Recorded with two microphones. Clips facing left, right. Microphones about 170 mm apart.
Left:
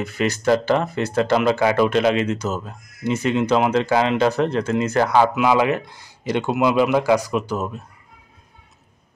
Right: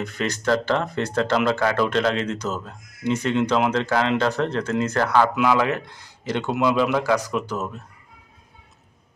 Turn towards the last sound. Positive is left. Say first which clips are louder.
# left 3 dB
turn(degrees=10)  # may be behind; listen again after turning